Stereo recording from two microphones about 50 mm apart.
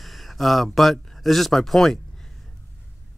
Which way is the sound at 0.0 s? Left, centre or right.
Centre.